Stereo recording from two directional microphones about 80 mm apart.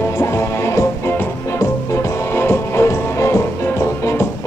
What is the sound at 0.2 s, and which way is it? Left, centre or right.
Music, left.